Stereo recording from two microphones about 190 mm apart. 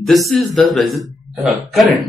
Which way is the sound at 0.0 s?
Centre (ahead or behind).